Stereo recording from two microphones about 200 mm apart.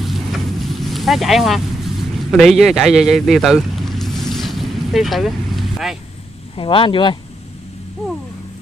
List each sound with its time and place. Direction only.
0.0 s vehicle: centre (ahead or behind)
6.5 s speech: 25° left (ahead or behind)